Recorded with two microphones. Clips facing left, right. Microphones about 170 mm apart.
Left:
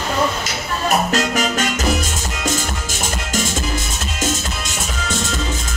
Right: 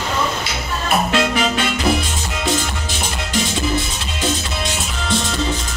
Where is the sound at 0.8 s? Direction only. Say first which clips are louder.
Even; 40° left (ahead or behind).